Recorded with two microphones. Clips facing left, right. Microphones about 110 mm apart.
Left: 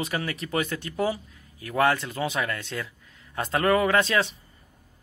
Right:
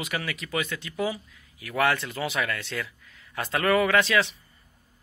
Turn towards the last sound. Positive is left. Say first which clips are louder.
# even
turn(degrees=35)  # may be behind; listen again after turning